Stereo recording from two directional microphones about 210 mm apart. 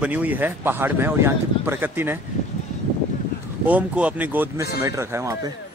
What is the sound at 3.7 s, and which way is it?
Speech, 5° right (ahead or behind).